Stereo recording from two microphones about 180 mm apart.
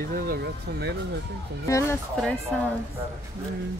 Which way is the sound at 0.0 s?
55° right (ahead or behind).